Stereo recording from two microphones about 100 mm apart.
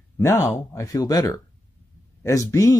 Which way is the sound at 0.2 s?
25° left (ahead or behind).